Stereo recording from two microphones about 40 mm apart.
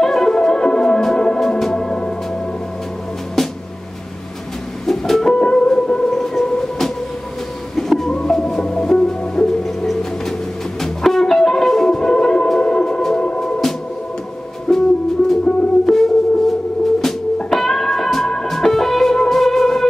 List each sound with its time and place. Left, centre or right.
0.0 s music: centre
3.4 s music: centre
4.8 s music: centre
10.8 s music: centre
15.4 s music: centre